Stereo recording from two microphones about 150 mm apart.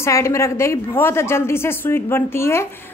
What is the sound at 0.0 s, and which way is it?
A woman's voice, 20° left (ahead or behind).